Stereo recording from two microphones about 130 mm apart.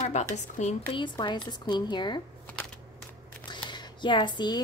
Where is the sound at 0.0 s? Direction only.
65° left (ahead or behind).